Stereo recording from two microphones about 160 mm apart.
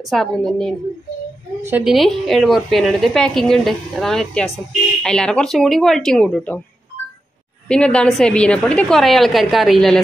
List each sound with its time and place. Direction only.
0.0 s a woman's voice: centre (ahead or behind)
1.6 s a woman's voice: 10° right (ahead or behind)
1.9 s a woman's voice: centre (ahead or behind)
7.6 s a woman's voice: 5° left (ahead or behind)